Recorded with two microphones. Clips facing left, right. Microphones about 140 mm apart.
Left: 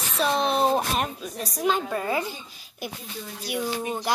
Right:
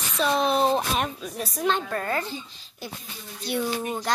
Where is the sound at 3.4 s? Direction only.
10° left (ahead or behind).